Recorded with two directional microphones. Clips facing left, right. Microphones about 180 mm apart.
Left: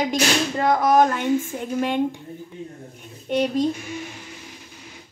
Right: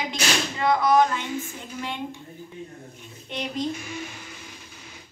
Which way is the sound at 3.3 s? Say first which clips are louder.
Left 12 dB; 50° left (ahead or behind).